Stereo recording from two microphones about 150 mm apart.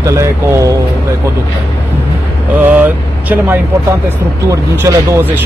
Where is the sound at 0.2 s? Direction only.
20° right (ahead or behind).